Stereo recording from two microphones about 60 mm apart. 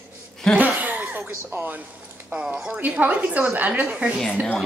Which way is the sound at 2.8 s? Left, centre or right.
Right.